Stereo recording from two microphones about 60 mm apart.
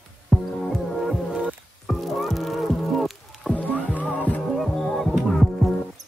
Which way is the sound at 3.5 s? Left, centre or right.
Left.